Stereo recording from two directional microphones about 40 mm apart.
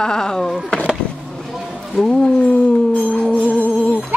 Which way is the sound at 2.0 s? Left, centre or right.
Centre.